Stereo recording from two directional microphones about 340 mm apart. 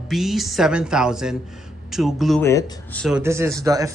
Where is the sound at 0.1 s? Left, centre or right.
Centre.